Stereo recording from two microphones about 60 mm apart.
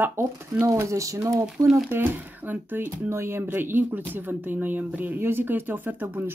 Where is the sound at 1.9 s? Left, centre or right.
Right.